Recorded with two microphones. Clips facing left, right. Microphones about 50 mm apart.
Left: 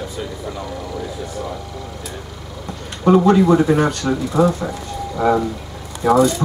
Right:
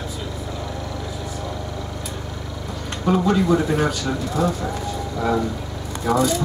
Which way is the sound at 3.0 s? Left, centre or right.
Centre.